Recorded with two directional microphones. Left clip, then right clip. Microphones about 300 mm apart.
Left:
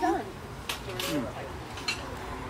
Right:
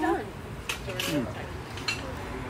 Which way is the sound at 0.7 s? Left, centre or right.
Left.